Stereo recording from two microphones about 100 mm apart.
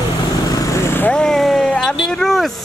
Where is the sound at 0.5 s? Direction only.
35° left (ahead or behind).